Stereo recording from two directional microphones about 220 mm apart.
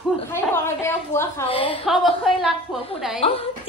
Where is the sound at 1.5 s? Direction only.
25° left (ahead or behind).